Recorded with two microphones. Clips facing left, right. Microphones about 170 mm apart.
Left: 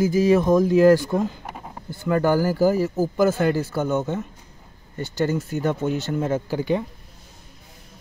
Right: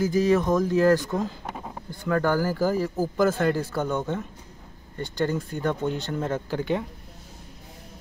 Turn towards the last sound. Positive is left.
turn(degrees=5)  # may be behind; listen again after turning